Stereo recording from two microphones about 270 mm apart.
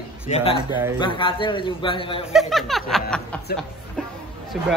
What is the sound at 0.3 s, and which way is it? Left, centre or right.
Speech, left.